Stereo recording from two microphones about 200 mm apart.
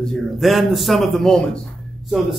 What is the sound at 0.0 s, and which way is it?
A man's voice, centre (ahead or behind).